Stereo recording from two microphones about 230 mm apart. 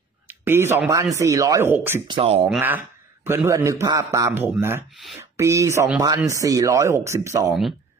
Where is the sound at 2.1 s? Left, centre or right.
Right.